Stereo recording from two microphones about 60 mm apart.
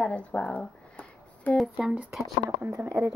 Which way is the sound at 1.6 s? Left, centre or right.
Centre.